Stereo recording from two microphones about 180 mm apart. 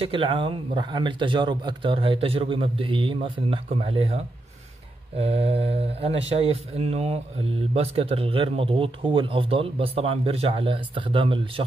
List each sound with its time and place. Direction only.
0.0 s a man's voice: 30° right (ahead or behind)
5.2 s speech: 35° right (ahead or behind)